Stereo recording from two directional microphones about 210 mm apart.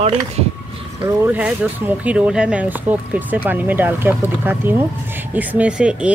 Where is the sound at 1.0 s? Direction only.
10° right (ahead or behind).